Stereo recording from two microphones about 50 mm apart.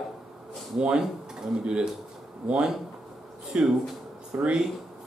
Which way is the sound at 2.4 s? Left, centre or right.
Centre.